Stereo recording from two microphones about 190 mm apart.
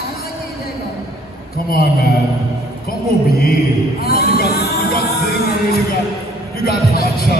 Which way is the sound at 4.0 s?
55° left (ahead or behind).